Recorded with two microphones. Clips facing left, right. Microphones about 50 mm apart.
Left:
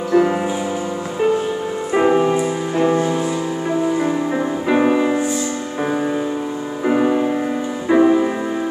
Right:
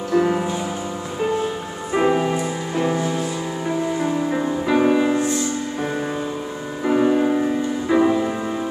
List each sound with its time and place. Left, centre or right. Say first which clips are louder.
0.1 s music: left 3 dB; centre
2.0 s music: left 3 dB; centre; by 3.3 s left
3.6 s music: left 3 dB; centre
6.9 s music: even; centre